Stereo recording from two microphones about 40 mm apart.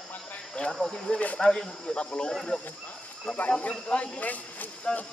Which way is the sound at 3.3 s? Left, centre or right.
Left.